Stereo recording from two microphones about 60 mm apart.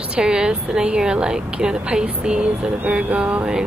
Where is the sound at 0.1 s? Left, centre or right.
Centre.